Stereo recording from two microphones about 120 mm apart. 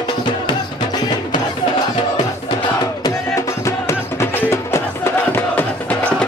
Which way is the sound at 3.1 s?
25° left (ahead or behind).